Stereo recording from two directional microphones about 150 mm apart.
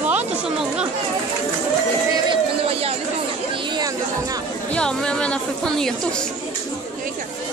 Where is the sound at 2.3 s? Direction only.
40° right (ahead or behind).